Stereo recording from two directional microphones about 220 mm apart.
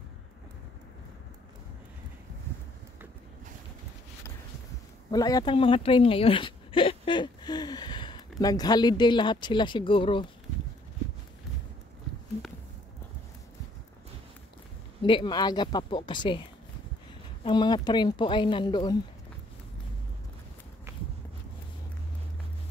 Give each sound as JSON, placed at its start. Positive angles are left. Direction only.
{"t": 5.1, "sound": "speech", "side_deg": 15}
{"t": 15.0, "sound": "speech", "side_deg": 20}
{"t": 17.4, "sound": "speech", "side_deg": 20}